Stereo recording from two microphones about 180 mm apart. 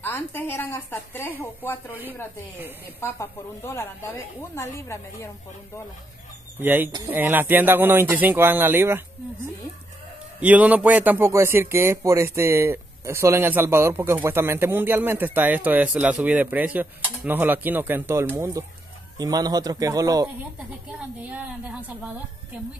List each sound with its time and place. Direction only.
0.0 s speech: 10° left (ahead or behind)
1.9 s speech: 10° right (ahead or behind)
3.0 s speech: 15° left (ahead or behind)
6.6 s speech: 10° right (ahead or behind)
10.4 s a man's voice: 10° right (ahead or behind)
21.2 s speech: 10° right (ahead or behind)